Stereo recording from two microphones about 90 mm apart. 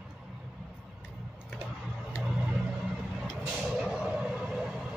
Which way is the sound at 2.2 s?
10° right (ahead or behind).